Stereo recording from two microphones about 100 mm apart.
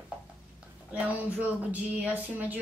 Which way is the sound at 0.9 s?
15° right (ahead or behind).